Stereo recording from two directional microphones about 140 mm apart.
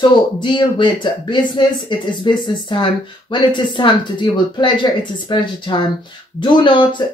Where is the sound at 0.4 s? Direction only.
35° left (ahead or behind).